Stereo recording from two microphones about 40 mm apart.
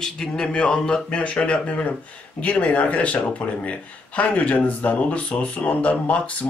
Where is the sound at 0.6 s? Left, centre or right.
Left.